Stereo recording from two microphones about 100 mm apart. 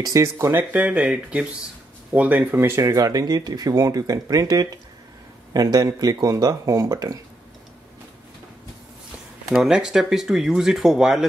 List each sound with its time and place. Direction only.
0.0 s speech: 30° right (ahead or behind)
0.7 s speech: 10° right (ahead or behind); by 7.2 s 35° right (ahead or behind)
9.5 s speech: 5° right (ahead or behind)